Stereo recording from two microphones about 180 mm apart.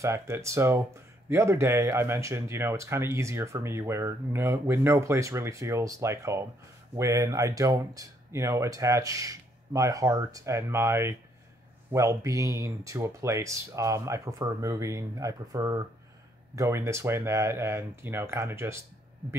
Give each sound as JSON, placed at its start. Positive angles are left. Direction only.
{"t": 0.0, "sound": "speech", "side_deg": -15}